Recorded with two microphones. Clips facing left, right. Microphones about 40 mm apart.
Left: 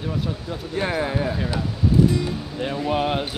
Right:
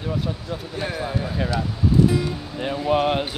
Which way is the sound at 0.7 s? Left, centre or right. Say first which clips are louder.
Left 5 dB; left.